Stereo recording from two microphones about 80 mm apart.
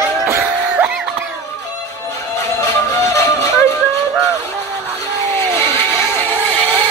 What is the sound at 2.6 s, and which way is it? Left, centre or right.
Music, left.